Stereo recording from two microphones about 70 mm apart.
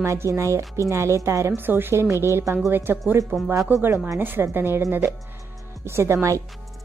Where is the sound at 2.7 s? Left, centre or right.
Right.